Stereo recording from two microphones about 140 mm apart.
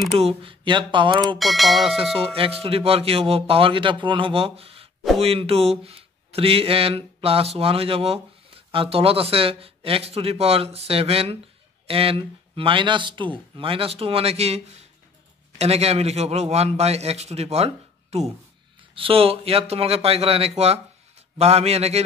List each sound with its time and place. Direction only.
0.1 s speech: 45° right (ahead or behind)
1.4 s speech: centre (ahead or behind)
2.1 s speech: 40° right (ahead or behind)